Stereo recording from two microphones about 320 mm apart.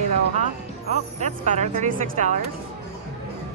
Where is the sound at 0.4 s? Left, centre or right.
Left.